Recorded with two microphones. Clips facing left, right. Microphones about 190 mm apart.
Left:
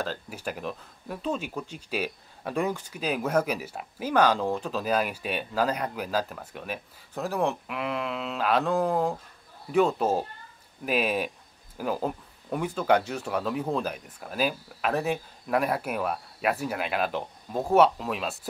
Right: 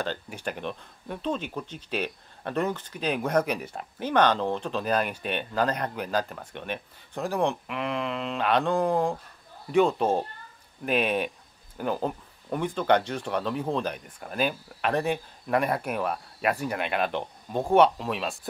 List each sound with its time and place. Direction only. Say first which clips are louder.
0.0 s speech: right 1 dB; 5° left (ahead or behind)